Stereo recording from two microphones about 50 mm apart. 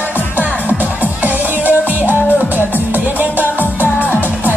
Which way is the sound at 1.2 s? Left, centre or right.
Right.